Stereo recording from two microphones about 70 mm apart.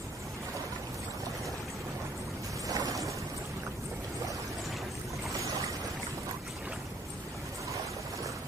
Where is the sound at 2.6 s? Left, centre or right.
Right.